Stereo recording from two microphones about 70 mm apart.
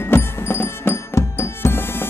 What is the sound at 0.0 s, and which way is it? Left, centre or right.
Music, left.